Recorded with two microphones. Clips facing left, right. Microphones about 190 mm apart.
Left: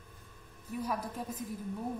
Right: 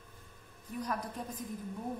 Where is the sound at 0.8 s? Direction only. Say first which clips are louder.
Left 1 dB; 5° left (ahead or behind).